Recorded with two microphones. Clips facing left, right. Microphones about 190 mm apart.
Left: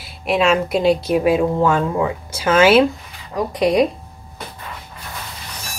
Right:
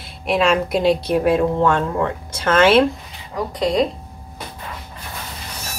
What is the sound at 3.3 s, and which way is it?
Speech, 20° left (ahead or behind).